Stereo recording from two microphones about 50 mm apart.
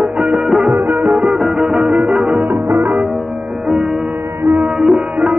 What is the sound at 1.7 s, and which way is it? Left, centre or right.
Music, centre.